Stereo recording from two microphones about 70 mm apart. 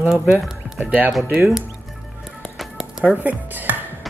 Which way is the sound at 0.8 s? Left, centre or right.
Centre.